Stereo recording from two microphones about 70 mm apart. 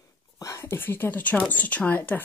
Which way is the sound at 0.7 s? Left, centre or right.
Left.